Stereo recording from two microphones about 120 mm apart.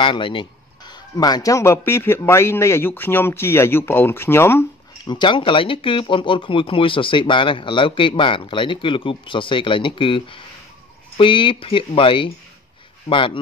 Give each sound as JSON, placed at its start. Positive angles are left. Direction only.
{"t": 0.0, "sound": "speech", "side_deg": 45}
{"t": 5.0, "sound": "speech", "side_deg": 40}